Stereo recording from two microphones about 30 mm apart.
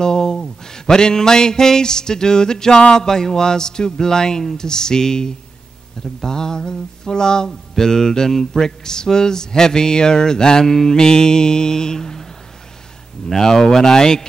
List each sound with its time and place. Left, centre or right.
0.0 s speech: left
13.3 s speech: centre